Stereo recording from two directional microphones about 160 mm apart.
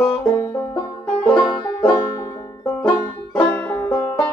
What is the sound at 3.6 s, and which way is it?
Music, 15° left (ahead or behind).